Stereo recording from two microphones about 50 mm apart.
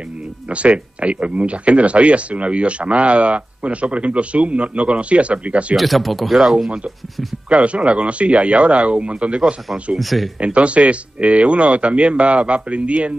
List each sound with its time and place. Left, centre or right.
0.5 s speech: right
5.8 s speech: centre
6.3 s speech: centre
9.9 s speech: centre
10.4 s speech: right